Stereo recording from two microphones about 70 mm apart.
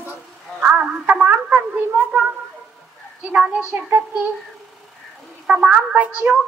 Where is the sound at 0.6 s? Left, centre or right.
Centre.